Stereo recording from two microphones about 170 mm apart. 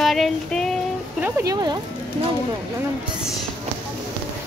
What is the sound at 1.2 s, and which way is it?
Speech, 20° right (ahead or behind).